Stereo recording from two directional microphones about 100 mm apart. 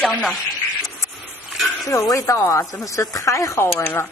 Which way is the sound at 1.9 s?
30° left (ahead or behind).